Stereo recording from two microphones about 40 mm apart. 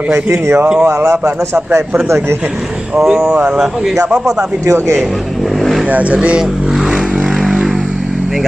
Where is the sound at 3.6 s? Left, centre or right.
Centre.